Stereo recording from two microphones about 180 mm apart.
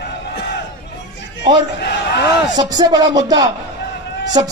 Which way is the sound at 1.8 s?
65° left (ahead or behind).